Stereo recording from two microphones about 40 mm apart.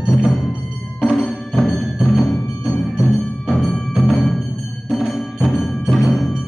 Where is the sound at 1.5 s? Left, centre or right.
Centre.